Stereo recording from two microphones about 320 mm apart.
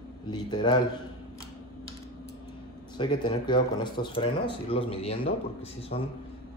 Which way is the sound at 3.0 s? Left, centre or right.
Centre.